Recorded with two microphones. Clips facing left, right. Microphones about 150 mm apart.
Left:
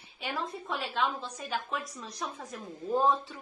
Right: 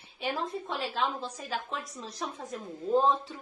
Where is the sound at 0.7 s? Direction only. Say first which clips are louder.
Left 2 dB; 30° right (ahead or behind).